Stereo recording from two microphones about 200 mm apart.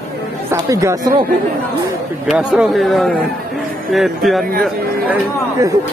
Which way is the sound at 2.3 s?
5° right (ahead or behind).